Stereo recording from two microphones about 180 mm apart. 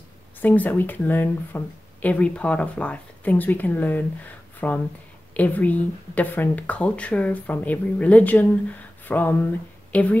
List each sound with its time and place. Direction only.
0.4 s speech: 10° left (ahead or behind)